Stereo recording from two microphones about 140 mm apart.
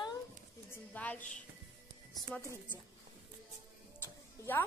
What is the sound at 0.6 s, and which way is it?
Speech, 10° left (ahead or behind).